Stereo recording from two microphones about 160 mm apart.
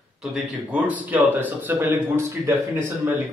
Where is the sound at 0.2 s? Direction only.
5° right (ahead or behind).